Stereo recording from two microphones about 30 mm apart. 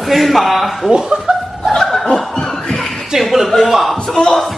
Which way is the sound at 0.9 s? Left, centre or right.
Right.